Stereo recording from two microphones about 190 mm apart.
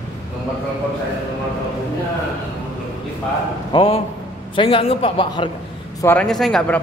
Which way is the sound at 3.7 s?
30° left (ahead or behind).